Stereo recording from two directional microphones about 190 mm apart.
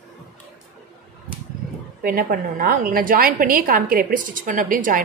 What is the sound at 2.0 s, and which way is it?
A woman's voice, 50° right (ahead or behind).